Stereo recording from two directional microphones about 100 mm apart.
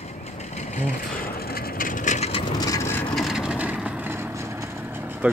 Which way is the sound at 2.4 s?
45° left (ahead or behind).